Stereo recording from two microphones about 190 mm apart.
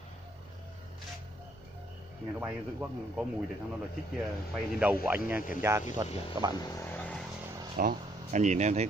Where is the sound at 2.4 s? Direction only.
10° right (ahead or behind).